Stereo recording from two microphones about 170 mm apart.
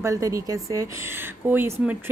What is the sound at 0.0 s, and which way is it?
Speech, 20° right (ahead or behind).